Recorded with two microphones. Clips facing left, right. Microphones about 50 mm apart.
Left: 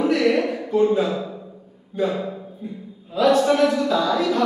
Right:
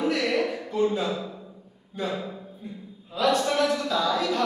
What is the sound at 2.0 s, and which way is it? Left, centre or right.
A man's voice, centre.